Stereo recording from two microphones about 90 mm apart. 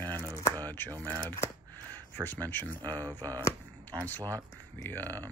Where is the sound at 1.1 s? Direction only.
25° left (ahead or behind).